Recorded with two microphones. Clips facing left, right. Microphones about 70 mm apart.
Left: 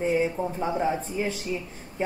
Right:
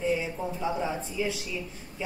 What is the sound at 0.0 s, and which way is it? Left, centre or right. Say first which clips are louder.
Speech: left 4 dB; left.